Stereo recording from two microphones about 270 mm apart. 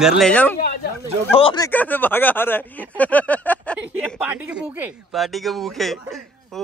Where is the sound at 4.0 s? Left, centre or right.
Centre.